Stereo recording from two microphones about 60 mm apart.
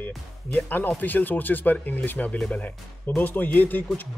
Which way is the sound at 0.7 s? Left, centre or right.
Left.